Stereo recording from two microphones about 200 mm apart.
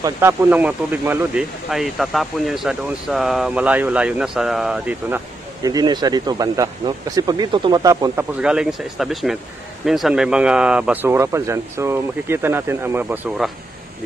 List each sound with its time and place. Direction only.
0.0 s speech: 10° right (ahead or behind)
5.6 s speech: 20° right (ahead or behind)
8.4 s speech: 5° right (ahead or behind)